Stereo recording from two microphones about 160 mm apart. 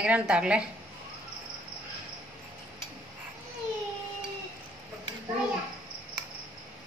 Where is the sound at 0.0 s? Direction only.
5° right (ahead or behind).